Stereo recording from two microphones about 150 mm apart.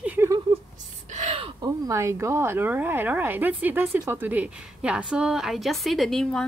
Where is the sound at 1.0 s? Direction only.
55° right (ahead or behind).